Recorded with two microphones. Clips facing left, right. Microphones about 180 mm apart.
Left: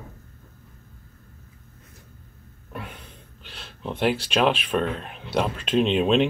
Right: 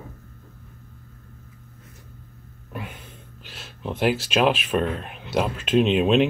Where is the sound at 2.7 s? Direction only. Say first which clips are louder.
Right 2 dB; 5° right (ahead or behind).